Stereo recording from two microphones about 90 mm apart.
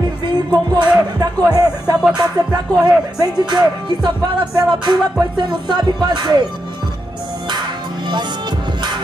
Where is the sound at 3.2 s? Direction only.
50° right (ahead or behind).